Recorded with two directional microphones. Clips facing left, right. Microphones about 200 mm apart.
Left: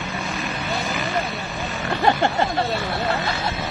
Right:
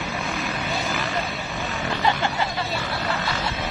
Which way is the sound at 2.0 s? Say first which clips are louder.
Left 5 dB; 50° left (ahead or behind).